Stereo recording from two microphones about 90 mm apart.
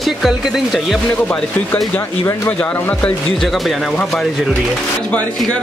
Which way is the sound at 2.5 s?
15° left (ahead or behind).